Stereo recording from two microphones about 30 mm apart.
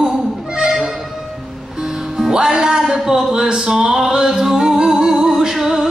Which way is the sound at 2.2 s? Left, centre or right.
Right.